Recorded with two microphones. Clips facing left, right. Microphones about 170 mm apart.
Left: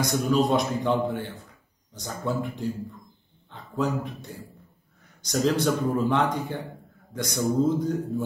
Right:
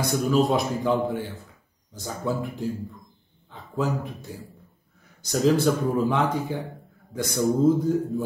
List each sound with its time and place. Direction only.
0.1 s a man's voice: centre (ahead or behind)